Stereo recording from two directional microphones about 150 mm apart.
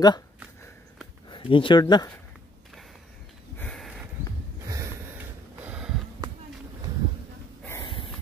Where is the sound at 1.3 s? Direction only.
35° left (ahead or behind).